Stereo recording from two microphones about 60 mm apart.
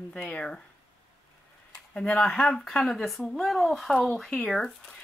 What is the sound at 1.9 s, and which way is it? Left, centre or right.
Speech, centre.